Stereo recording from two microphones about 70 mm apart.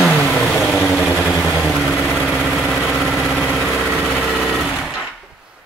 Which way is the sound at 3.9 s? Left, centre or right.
Centre.